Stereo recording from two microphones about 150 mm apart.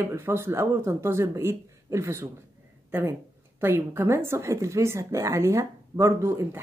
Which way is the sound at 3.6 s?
15° right (ahead or behind).